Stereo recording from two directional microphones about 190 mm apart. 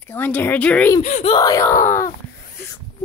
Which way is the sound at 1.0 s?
40° left (ahead or behind).